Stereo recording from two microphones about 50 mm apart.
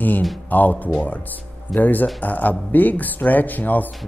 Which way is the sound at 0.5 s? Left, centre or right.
Left.